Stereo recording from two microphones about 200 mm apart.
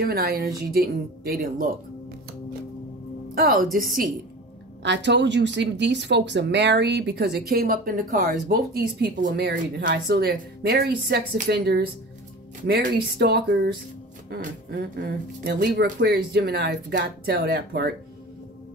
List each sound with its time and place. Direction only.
0.0 s speech: 50° right (ahead or behind)
3.3 s speech: 45° right (ahead or behind)
4.8 s speech: 60° right (ahead or behind)